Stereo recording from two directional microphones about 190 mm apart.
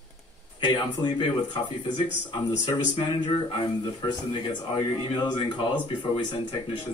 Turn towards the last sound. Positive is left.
turn(degrees=25)  # may be behind; listen again after turning